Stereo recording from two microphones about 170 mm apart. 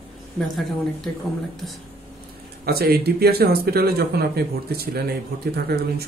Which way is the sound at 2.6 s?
65° right (ahead or behind).